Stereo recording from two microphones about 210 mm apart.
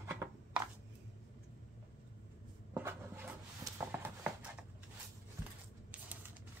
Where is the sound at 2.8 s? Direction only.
10° right (ahead or behind).